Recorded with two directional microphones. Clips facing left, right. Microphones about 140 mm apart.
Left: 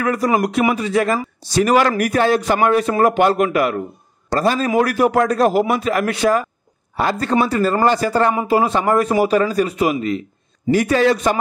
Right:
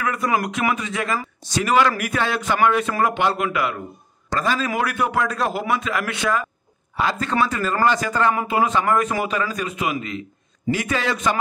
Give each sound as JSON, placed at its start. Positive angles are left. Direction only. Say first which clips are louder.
{"t": 0.0, "sound": "a man's voice", "louder": "left 5 dB", "side_deg": 35}